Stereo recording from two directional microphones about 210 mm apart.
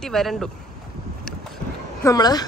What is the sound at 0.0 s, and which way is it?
Speech, centre (ahead or behind).